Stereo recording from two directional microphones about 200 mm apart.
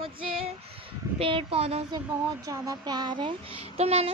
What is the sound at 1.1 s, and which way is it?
Speech, 25° right (ahead or behind).